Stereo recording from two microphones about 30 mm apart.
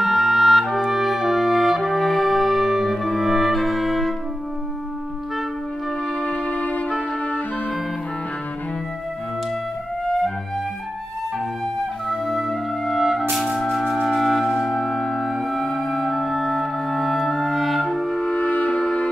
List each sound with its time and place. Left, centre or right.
0.0 s music: centre
0.8 s brass instrument: centre
3.2 s music: centre
6.4 s music: left
12.1 s music: centre
13.4 s music: centre
18.3 s music: left